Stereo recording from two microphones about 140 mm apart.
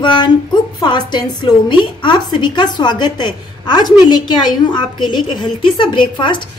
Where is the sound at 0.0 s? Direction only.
35° left (ahead or behind).